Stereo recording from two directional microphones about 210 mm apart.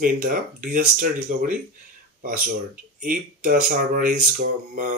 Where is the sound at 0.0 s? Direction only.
40° right (ahead or behind).